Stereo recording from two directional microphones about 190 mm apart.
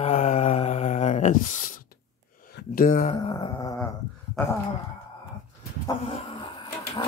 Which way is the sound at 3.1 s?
25° left (ahead or behind).